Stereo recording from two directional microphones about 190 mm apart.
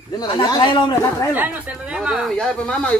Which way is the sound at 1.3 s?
10° right (ahead or behind).